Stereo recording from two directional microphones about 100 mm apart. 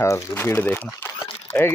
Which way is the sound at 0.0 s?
25° left (ahead or behind).